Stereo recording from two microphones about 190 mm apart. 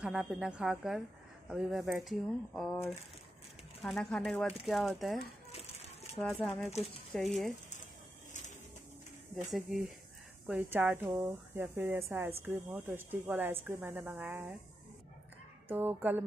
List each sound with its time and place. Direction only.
0.0 s speech: 5° right (ahead or behind)
6.2 s speech: centre (ahead or behind)
8.3 s printer: 40° left (ahead or behind)
9.5 s a woman's voice: centre (ahead or behind)
15.7 s a woman's voice: 10° right (ahead or behind)